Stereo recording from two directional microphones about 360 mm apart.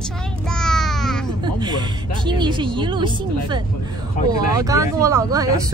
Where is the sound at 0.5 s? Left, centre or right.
Centre.